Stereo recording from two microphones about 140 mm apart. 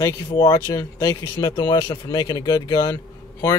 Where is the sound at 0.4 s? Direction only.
20° left (ahead or behind).